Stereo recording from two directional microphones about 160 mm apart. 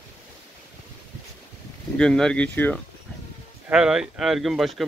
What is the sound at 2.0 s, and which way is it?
Speech, 5° left (ahead or behind).